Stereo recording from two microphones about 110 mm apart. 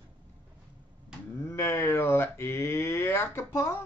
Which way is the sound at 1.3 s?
25° left (ahead or behind).